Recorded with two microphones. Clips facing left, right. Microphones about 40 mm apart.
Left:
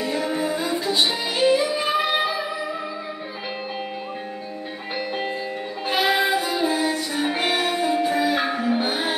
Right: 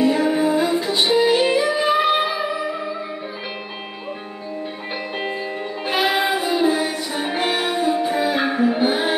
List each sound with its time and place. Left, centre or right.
0.0 s music: centre
0.8 s music: centre
5.9 s music: right